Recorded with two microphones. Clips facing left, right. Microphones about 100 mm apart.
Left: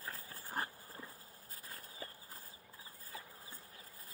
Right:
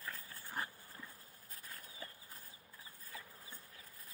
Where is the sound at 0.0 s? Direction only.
35° left (ahead or behind).